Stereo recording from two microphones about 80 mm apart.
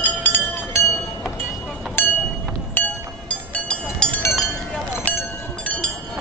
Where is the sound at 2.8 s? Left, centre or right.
Left.